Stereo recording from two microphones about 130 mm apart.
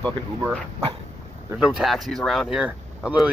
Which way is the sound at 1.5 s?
5° right (ahead or behind).